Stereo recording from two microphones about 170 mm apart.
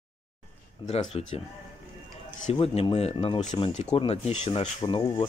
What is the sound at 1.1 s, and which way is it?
Speech, 35° left (ahead or behind).